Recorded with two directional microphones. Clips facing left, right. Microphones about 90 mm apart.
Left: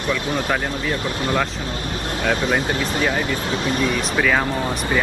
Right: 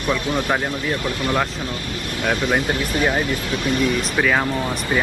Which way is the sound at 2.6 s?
25° left (ahead or behind).